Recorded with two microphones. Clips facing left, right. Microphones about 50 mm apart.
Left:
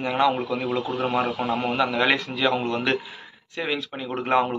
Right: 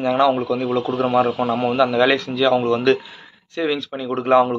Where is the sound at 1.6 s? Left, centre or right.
Centre.